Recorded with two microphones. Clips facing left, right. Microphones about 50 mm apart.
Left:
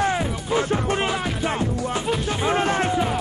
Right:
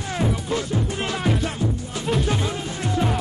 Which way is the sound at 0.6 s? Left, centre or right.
Left.